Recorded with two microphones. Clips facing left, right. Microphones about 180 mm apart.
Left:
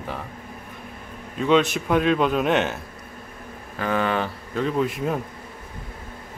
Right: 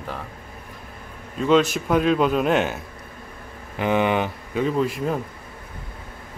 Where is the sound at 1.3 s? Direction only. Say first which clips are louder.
Right 1 dB; centre (ahead or behind).